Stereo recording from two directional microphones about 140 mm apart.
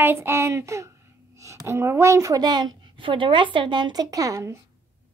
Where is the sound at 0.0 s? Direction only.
15° right (ahead or behind).